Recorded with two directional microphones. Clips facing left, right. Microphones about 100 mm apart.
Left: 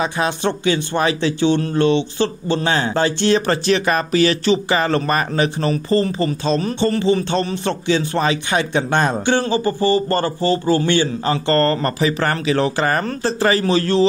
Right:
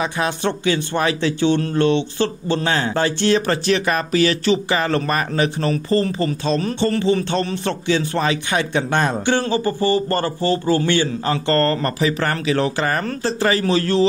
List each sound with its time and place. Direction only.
0.0 s speech: 25° left (ahead or behind)